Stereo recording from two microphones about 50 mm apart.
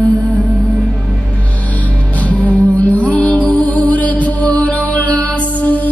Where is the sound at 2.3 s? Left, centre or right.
Left.